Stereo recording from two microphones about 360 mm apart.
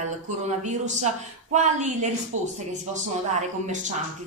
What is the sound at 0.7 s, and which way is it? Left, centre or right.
Speech, centre.